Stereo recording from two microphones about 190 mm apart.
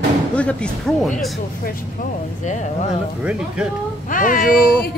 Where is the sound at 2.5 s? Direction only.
40° left (ahead or behind).